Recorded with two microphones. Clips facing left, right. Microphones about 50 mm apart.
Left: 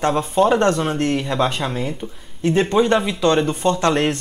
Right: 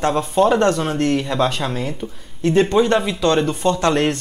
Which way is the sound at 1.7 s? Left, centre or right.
Centre.